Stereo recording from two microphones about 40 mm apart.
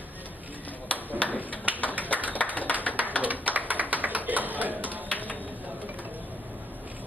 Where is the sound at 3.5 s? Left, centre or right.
Right.